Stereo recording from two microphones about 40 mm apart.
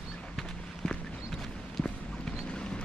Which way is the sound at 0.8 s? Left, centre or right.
Left.